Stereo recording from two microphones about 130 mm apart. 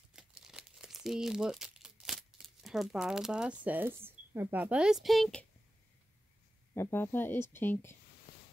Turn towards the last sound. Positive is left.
turn(degrees=15)  # may be behind; listen again after turning